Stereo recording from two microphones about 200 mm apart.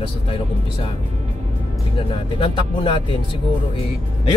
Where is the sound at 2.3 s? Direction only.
25° left (ahead or behind).